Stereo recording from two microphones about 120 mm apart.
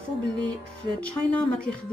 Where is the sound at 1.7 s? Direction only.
10° left (ahead or behind).